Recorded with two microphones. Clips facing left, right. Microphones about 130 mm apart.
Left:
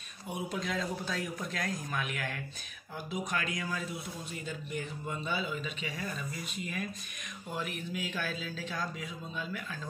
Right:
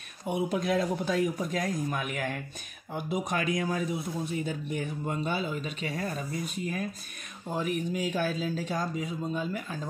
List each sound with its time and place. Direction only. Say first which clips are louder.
0.3 s speech: right 8 dB; 55° right (ahead or behind)